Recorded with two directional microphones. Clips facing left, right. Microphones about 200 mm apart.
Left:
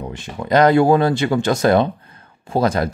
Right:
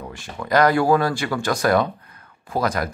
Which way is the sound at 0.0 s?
20° left (ahead or behind).